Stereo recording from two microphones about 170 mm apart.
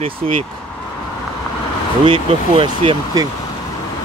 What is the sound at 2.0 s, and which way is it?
Speech, 30° right (ahead or behind).